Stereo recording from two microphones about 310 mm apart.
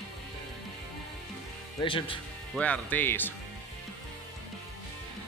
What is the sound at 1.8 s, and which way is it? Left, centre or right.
Speech, centre.